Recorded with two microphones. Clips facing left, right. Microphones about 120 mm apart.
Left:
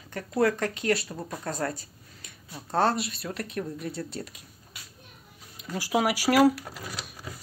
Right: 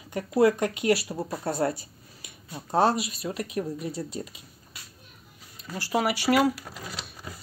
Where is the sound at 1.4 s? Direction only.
30° right (ahead or behind).